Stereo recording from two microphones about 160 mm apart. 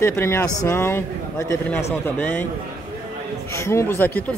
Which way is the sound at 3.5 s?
15° left (ahead or behind).